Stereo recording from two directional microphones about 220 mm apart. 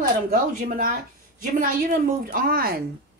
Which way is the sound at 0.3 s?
40° right (ahead or behind).